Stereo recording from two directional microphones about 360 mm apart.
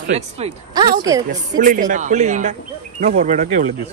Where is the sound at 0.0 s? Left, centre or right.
Centre.